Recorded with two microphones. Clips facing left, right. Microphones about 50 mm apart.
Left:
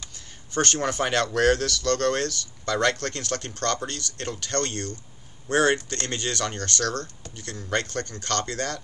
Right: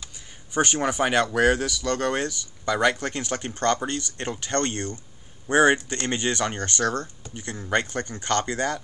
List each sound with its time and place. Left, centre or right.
0.0 s speech: centre